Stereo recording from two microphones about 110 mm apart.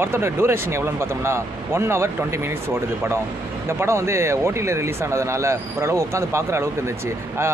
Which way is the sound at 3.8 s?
25° right (ahead or behind).